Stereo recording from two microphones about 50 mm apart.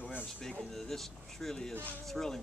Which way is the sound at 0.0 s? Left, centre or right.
Left.